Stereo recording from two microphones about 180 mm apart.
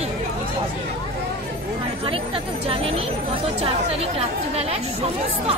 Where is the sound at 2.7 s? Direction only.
30° right (ahead or behind).